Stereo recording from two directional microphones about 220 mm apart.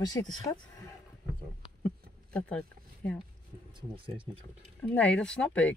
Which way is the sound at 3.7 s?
25° right (ahead or behind).